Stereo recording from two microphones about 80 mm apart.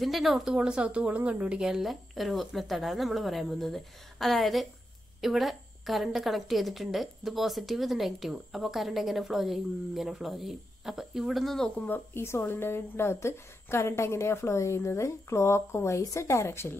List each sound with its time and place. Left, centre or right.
0.0 s a woman's voice: centre
11.9 s a woman's voice: left